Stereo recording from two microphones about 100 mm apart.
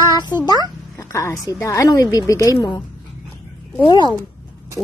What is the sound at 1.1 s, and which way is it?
A woman's voice, 30° left (ahead or behind).